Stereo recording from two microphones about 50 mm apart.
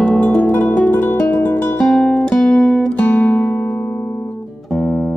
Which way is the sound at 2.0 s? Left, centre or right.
Left.